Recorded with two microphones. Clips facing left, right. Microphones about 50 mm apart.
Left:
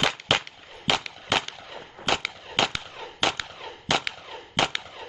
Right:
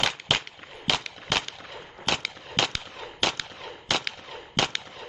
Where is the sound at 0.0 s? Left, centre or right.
Centre.